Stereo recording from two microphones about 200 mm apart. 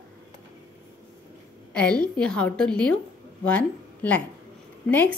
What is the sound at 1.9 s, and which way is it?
Speech, 20° right (ahead or behind).